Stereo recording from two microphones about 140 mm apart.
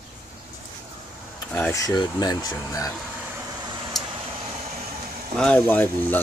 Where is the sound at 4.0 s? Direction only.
Centre (ahead or behind).